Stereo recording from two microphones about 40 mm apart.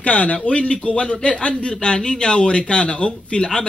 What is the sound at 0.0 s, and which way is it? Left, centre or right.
Speech, left.